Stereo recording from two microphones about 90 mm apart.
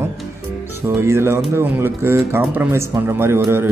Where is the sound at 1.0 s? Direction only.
30° right (ahead or behind).